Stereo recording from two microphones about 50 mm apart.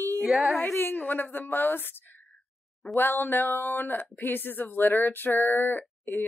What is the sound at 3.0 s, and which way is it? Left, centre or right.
Speech, left.